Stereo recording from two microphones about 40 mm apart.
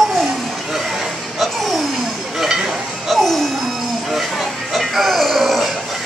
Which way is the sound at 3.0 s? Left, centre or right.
Centre.